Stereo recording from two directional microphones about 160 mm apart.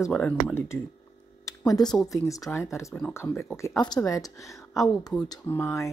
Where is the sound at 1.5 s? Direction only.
25° left (ahead or behind).